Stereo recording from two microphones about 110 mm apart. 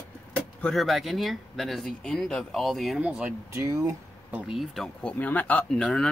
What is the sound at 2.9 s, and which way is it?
Speech, 10° right (ahead or behind).